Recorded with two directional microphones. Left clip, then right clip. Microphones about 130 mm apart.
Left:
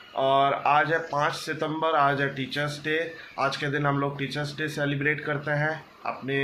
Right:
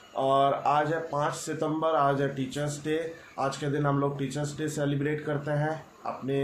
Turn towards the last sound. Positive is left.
turn(degrees=-10)  # may be behind; listen again after turning